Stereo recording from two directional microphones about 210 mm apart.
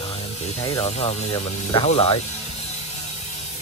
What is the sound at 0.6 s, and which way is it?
Speech, 20° left (ahead or behind).